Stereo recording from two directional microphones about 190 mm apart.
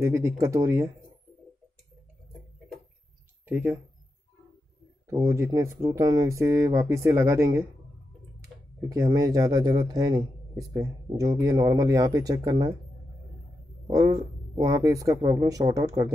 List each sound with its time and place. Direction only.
0.0 s speech: 15° right (ahead or behind)
3.4 s speech: 10° right (ahead or behind)
5.0 s speech: 15° right (ahead or behind)
13.8 s speech: 20° right (ahead or behind)